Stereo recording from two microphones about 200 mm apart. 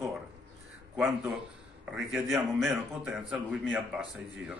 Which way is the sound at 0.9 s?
5° right (ahead or behind).